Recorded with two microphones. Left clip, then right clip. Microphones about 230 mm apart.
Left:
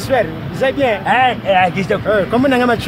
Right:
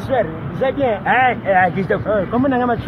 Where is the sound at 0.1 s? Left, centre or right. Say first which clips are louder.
Left 3 dB; centre.